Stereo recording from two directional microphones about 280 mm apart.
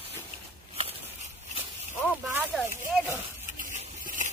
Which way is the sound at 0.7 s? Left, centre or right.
Right.